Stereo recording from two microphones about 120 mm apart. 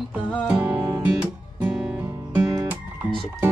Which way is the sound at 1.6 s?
10° right (ahead or behind).